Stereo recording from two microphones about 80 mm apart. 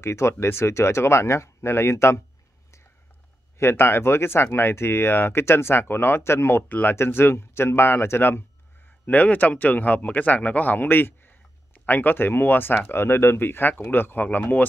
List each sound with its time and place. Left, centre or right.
0.0 s speech: left
3.5 s speech: left